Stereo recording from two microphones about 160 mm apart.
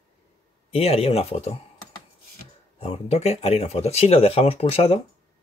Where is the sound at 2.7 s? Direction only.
40° left (ahead or behind).